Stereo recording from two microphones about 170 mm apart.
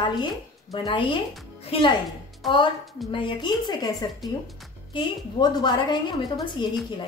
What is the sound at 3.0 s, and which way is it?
A woman's voice, 30° left (ahead or behind).